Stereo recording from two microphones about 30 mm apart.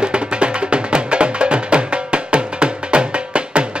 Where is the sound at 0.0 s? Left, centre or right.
Right.